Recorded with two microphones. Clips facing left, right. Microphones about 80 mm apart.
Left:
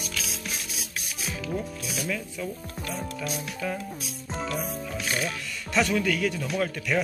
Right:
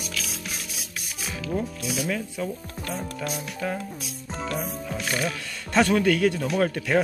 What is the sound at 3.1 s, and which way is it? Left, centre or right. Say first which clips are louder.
Speech: right 2 dB; right.